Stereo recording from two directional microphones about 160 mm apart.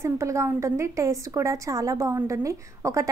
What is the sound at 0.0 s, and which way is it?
A woman's voice, 15° right (ahead or behind).